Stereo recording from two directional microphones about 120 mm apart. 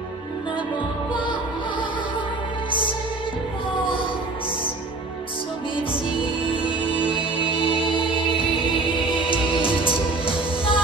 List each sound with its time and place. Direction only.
7.2 s music: 45° left (ahead or behind)